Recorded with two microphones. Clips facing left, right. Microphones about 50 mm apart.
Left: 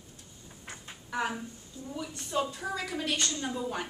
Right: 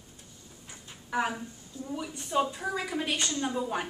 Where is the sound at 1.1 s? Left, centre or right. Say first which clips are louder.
Right 2 dB; centre.